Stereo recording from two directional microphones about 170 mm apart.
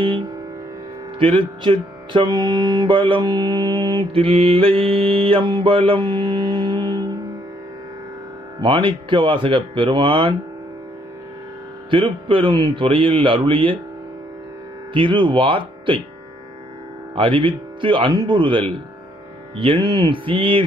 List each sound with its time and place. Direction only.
1.2 s music: 30° right (ahead or behind)
8.5 s music: 30° right (ahead or behind)
11.9 s speech: 30° right (ahead or behind)
15.0 s speech: 30° right (ahead or behind)
17.1 s music: 30° right (ahead or behind)